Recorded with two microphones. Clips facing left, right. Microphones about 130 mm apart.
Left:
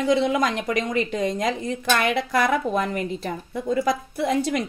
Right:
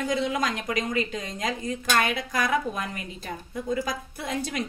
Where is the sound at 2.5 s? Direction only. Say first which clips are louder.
Left 5 dB; 50° left (ahead or behind).